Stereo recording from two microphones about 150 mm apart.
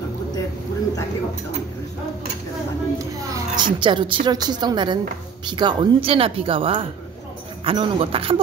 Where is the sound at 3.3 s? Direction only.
30° right (ahead or behind).